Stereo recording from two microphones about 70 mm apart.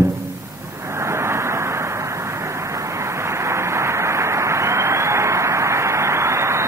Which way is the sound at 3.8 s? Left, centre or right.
Right.